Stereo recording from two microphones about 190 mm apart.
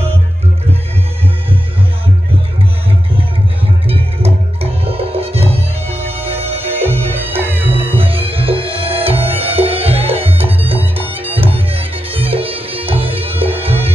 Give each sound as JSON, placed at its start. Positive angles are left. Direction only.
{"t": 3.8, "sound": "music", "side_deg": -30}
{"t": 6.7, "sound": "music", "side_deg": -10}
{"t": 7.7, "sound": "music", "side_deg": -30}
{"t": 10.4, "sound": "music", "side_deg": -10}
{"t": 11.5, "sound": "music", "side_deg": -30}